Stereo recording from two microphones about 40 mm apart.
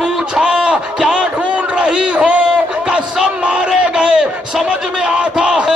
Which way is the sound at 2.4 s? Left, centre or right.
Right.